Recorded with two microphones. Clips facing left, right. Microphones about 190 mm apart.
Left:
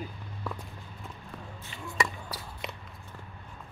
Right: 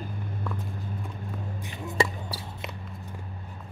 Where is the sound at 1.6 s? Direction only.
20° right (ahead or behind).